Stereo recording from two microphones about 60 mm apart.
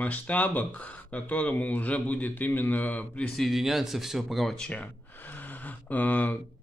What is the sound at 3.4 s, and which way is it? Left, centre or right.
Speech, centre.